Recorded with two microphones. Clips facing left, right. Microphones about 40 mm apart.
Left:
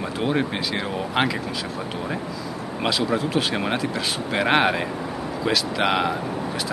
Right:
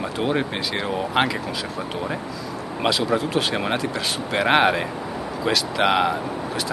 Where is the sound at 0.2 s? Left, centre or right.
Centre.